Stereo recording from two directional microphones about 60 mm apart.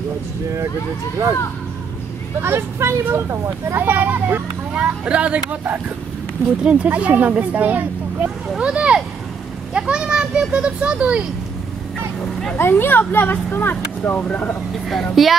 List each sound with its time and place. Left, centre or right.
2.4 s speech: right
3.7 s speech: right
4.7 s speech: centre
6.6 s speech: centre
8.5 s a sound: centre
9.8 s speech: centre
12.5 s speech: left
15.2 s a woman's voice: centre